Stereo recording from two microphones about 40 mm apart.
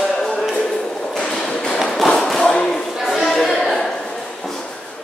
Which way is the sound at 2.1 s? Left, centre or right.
Centre.